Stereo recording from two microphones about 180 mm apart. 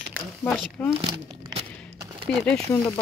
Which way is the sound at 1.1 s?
25° right (ahead or behind).